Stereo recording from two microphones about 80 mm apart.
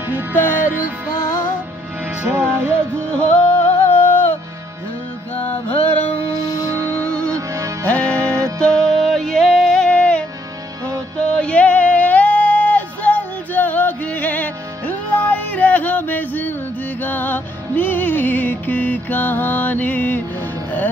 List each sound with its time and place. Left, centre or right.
2.3 s music: right
3.1 s music: centre
6.3 s music: left
6.7 s music: right
7.0 s music: centre
7.3 s music: right
7.8 s music: centre
8.1 s music: right
8.5 s music: centre